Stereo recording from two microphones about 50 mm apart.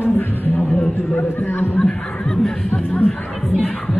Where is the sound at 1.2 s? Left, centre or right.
Left.